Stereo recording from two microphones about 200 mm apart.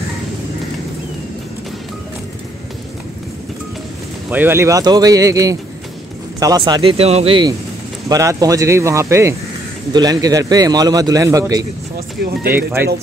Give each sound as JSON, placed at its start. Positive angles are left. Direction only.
{"t": 4.3, "sound": "a man's voice", "side_deg": -10}
{"t": 12.2, "sound": "speech", "side_deg": -50}
{"t": 12.5, "sound": "speech", "side_deg": -10}